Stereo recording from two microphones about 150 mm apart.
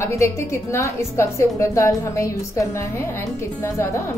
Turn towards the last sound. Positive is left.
turn(degrees=20)  # may be behind; listen again after turning